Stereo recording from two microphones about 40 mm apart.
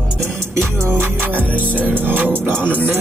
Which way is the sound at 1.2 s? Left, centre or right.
Right.